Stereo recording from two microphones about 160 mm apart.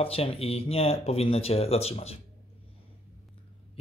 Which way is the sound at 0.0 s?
35° left (ahead or behind).